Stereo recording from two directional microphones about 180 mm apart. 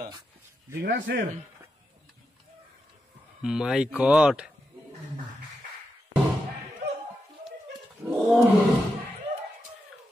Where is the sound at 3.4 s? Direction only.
5° right (ahead or behind).